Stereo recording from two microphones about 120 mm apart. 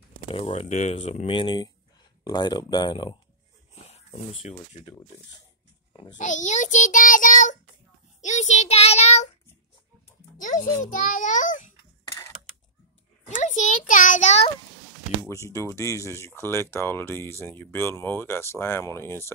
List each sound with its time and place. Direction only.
0.3 s speech: 55° left (ahead or behind)
1.3 s speech: 40° left (ahead or behind)
3.7 s speech: 60° left (ahead or behind)
6.1 s child singing: 90° left
8.2 s a child's voice: 75° left (ahead or behind)
11.1 s child singing: 90° left
13.3 s child singing: 90° left
15.2 s speech: 25° left (ahead or behind)